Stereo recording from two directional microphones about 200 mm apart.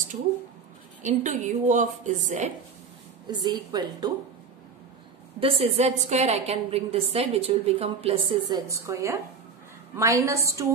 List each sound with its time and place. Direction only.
1.0 s a woman's voice: 35° right (ahead or behind)
3.3 s a woman's voice: 20° right (ahead or behind)
5.4 s a woman's voice: 30° right (ahead or behind)